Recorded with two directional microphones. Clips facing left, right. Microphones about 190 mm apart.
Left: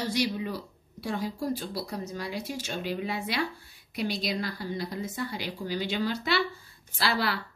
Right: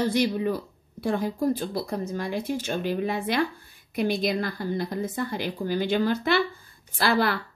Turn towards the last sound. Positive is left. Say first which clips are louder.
# right 5 dB
turn(degrees=-50)  # may be behind; listen again after turning